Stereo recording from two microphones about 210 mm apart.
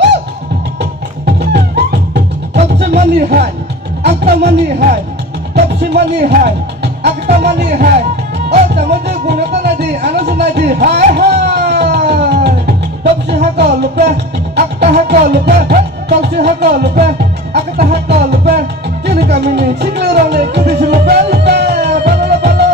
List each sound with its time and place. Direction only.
1.2 s music: 50° right (ahead or behind)
5.8 s speech: 50° right (ahead or behind)
7.4 s music: 45° right (ahead or behind)
8.5 s speech: 50° right (ahead or behind)
11.1 s music: 50° right (ahead or behind)